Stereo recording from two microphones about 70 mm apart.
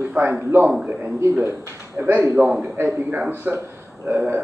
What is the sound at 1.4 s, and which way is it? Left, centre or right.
A man's voice, right.